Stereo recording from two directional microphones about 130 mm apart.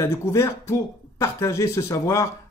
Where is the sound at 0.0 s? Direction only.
20° left (ahead or behind).